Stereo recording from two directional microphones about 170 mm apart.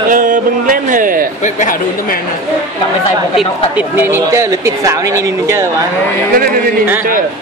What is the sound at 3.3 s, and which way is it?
Speech, 10° right (ahead or behind).